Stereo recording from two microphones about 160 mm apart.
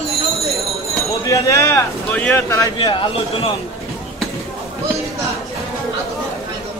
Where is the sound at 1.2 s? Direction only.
20° left (ahead or behind).